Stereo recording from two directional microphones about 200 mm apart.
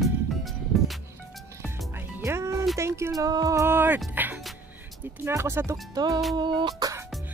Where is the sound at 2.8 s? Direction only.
15° right (ahead or behind).